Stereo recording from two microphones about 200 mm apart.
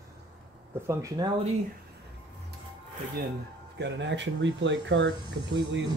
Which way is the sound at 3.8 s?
60° right (ahead or behind).